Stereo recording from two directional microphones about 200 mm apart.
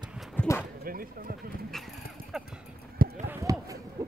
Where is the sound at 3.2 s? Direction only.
15° right (ahead or behind).